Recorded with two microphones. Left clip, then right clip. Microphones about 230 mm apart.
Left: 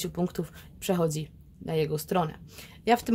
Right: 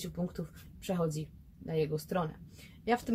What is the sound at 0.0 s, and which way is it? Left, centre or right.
Speech, left.